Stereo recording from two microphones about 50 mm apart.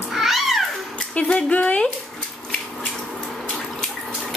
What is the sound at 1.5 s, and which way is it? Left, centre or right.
Speech, left.